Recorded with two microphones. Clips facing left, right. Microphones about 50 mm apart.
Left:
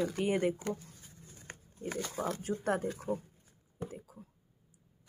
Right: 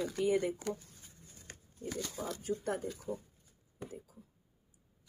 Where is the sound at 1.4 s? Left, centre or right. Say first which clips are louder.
Left 2 dB; left.